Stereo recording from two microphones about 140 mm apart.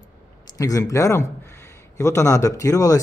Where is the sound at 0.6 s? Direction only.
25° left (ahead or behind).